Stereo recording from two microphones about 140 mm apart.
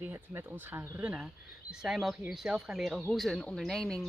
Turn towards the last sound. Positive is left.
turn(degrees=5)  # may be behind; listen again after turning